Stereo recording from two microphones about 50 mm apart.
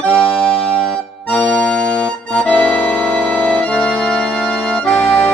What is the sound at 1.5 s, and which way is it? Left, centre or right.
Music, centre.